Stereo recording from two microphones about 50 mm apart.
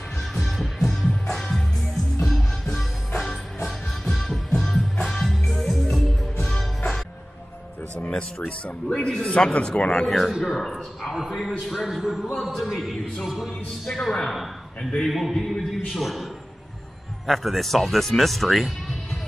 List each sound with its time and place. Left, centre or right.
0.2 s music: centre
8.8 s a man's voice: centre
10.0 s a man's voice: centre
10.3 s a man's voice: centre
13.9 s a man's voice: centre
14.8 s a man's voice: centre
15.0 s a man's voice: centre
17.3 s speech: centre